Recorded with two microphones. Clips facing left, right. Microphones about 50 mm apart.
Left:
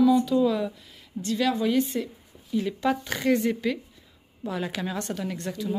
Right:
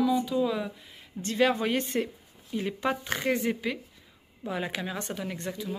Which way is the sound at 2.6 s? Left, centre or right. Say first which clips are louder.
Left 4 dB; right.